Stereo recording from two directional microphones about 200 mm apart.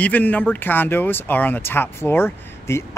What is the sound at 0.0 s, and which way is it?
Speech, 10° left (ahead or behind).